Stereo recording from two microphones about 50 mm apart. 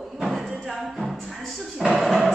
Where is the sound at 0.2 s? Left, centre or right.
Centre.